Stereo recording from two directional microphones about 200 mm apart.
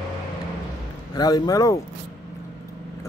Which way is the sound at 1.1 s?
20° left (ahead or behind).